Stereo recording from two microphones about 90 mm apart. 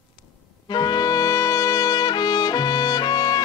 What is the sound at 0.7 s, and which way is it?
Trumpet, 50° left (ahead or behind).